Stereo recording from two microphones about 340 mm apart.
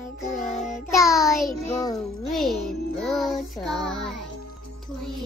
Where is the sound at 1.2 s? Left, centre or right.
Centre.